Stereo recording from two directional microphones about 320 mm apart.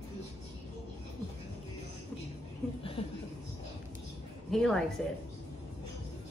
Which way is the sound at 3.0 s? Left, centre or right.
Centre.